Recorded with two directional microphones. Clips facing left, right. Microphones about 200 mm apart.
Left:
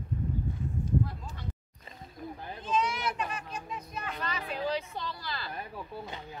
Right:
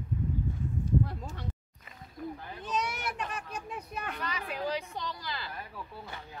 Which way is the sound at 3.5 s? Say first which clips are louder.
Even; 60° right (ahead or behind).